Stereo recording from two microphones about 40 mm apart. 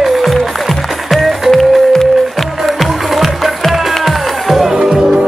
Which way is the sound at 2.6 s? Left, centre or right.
Centre.